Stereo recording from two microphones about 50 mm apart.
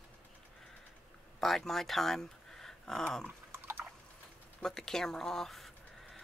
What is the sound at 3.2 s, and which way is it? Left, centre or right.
Drip, right.